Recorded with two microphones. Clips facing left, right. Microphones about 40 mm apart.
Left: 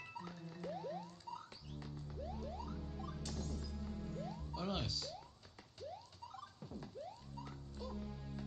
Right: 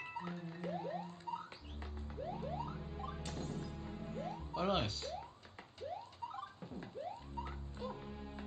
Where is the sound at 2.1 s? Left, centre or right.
Right.